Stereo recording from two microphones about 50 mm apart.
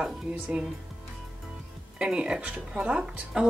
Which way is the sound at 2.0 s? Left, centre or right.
Right.